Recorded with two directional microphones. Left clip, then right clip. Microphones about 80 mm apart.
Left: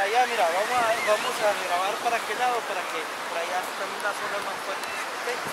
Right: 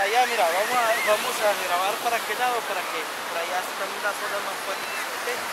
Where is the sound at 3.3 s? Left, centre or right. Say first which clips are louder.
Right 1 dB; centre.